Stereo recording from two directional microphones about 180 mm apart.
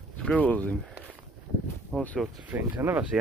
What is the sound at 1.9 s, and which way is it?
Speech, 5° left (ahead or behind).